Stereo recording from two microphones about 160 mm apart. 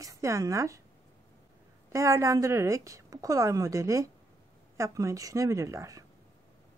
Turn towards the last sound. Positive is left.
turn(degrees=-20)  # may be behind; listen again after turning